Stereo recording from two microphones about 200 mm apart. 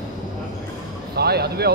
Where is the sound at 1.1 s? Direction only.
55° right (ahead or behind).